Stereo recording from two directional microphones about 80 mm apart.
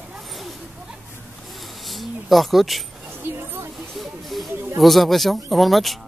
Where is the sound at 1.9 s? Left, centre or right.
Centre.